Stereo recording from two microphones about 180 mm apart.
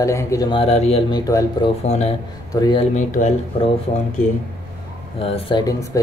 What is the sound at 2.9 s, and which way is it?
Speech, 45° left (ahead or behind).